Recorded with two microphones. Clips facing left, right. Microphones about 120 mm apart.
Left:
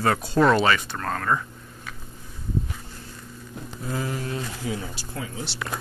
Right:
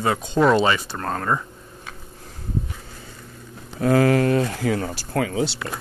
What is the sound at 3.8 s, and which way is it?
Speech, 75° right (ahead or behind).